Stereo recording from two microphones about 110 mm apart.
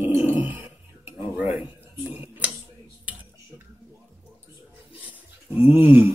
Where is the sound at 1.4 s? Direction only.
15° right (ahead or behind).